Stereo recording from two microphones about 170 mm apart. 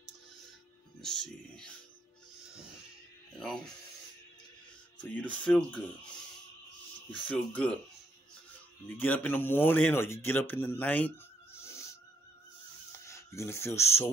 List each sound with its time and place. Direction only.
1.0 s speech: 5° left (ahead or behind)
3.3 s speech: 5° left (ahead or behind)
5.1 s speech: 5° left (ahead or behind)
7.1 s speech: 10° left (ahead or behind)
8.8 s speech: 10° left (ahead or behind)
13.0 s speech: 15° left (ahead or behind)